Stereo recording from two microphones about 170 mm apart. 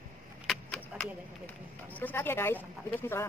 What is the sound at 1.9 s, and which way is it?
Speech, 10° left (ahead or behind).